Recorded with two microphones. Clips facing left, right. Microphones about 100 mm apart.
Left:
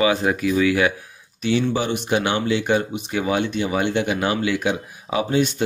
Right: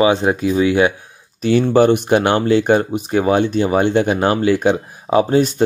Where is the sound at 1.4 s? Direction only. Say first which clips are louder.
Right 8 dB; 45° right (ahead or behind).